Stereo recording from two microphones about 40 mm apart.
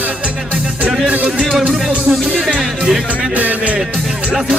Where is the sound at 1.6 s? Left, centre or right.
Right.